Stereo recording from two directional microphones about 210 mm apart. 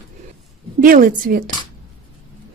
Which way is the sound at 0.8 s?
40° right (ahead or behind).